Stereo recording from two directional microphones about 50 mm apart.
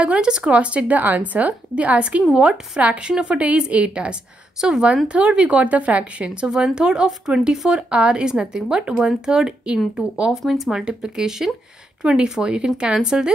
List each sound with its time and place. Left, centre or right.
0.0 s speech: centre
10.3 s speech: centre